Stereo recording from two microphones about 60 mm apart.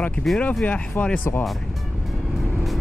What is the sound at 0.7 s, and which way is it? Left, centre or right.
Speech, left.